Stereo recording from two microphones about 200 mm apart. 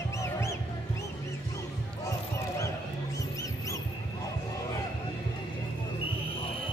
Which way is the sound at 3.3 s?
15° left (ahead or behind).